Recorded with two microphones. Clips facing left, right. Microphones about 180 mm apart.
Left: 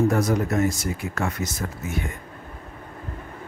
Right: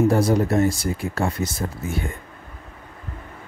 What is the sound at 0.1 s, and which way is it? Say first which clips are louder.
Speech: right 3 dB; 30° right (ahead or behind).